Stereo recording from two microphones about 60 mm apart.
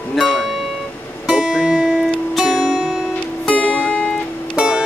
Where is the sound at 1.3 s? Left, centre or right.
Centre.